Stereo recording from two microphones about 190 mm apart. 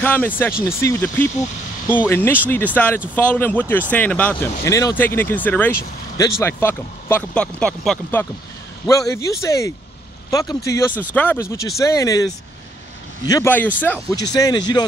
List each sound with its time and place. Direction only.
0.0 s speech: 10° left (ahead or behind)
8.8 s speech: 15° left (ahead or behind)
13.3 s speech: 10° left (ahead or behind)
14.1 s speech: 20° left (ahead or behind)